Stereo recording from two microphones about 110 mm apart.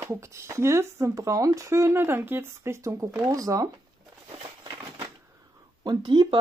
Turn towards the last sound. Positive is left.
turn(degrees=-45)  # may be behind; listen again after turning